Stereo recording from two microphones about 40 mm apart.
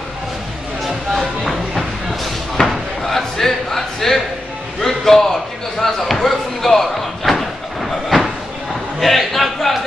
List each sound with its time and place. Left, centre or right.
0.8 s music: centre
2.6 s slam: centre
3.0 s a sound: centre
4.8 s basketball bounce: centre
9.0 s a man's voice: centre